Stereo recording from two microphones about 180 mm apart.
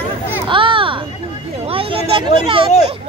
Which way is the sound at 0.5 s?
30° right (ahead or behind).